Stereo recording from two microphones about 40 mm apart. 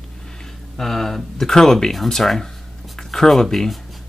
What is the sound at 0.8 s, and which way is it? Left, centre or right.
Speech, centre.